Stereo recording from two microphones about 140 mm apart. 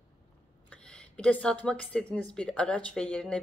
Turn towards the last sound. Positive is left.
turn(degrees=5)  # may be behind; listen again after turning